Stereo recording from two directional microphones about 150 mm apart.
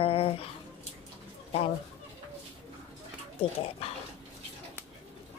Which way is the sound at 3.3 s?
40° left (ahead or behind).